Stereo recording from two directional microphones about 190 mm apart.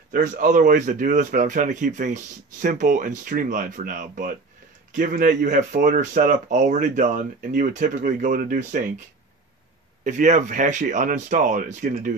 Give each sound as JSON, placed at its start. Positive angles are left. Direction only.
{"t": 0.1, "sound": "speech", "side_deg": -40}
{"t": 10.0, "sound": "speech", "side_deg": -40}